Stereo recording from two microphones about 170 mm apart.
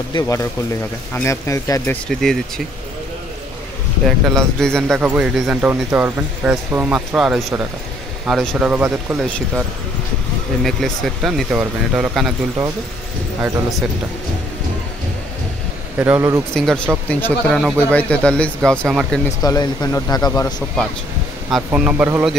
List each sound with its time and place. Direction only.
0.1 s speech: 20° left (ahead or behind)
2.0 s speech: 5° left (ahead or behind)
4.3 s speech: 5° left (ahead or behind)
10.6 s speech: centre (ahead or behind)
13.4 s speech: centre (ahead or behind)
16.0 s speech: 10° right (ahead or behind)
16.5 s speech: 5° left (ahead or behind)
19.4 s speech: 25° left (ahead or behind)
21.5 s speech: 5° right (ahead or behind)